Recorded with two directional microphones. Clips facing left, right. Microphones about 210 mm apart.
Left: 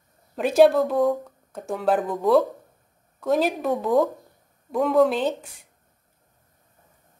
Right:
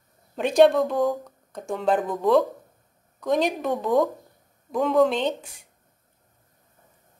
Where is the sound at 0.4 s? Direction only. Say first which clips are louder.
Left 1 dB; 5° left (ahead or behind).